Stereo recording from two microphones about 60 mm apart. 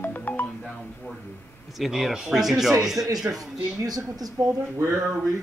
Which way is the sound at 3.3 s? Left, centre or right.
Right.